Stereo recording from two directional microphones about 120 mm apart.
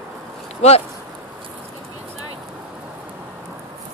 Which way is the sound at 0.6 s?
65° left (ahead or behind).